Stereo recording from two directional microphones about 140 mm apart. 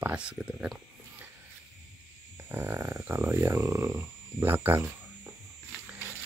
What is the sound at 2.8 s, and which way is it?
Speech, 25° right (ahead or behind).